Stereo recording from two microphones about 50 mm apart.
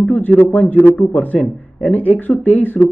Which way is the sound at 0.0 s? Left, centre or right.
Left.